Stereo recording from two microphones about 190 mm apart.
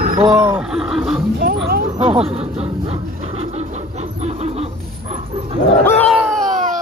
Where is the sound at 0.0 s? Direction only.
40° right (ahead or behind).